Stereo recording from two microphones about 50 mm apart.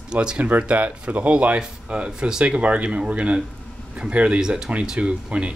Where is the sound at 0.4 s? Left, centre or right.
Right.